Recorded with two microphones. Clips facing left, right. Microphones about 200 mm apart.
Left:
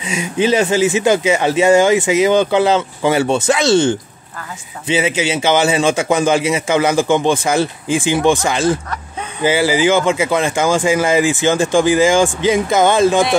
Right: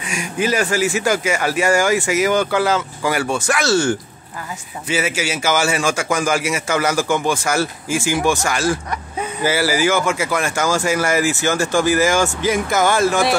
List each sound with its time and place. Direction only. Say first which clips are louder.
0.0 s speech: left 5 dB; 20° left (ahead or behind)